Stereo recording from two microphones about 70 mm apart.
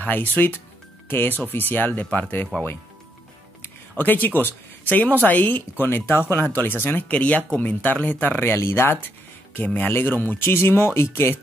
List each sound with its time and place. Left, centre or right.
0.0 s speech: left
1.0 s music: left
1.4 s speech: left
4.0 s speech: left